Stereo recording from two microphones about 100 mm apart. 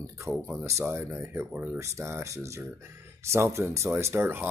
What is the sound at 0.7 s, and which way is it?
Speech, 25° right (ahead or behind).